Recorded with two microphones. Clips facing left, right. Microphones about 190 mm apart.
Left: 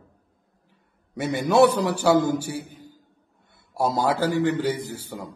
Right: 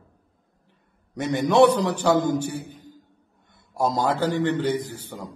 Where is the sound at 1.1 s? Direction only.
5° left (ahead or behind).